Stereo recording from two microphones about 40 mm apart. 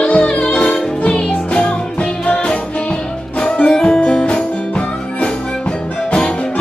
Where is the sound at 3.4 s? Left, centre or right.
Left.